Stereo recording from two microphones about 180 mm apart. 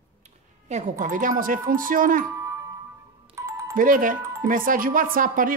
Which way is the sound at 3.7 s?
50° right (ahead or behind).